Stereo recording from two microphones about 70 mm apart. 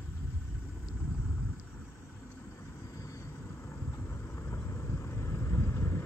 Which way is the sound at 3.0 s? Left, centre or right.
Left.